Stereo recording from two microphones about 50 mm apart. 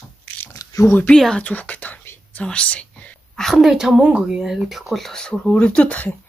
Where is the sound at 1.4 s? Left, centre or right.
Left.